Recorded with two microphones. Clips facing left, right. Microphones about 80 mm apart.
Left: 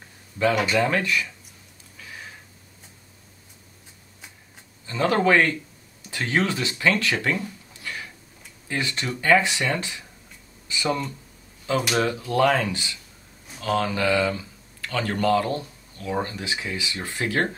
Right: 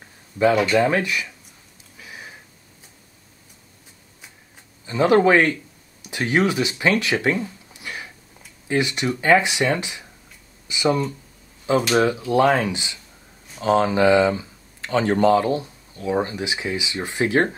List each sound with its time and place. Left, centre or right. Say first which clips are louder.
0.7 s speech: right 3 dB; centre
2.0 s a sound: right 1 dB; centre
4.8 s speech: right 5 dB; centre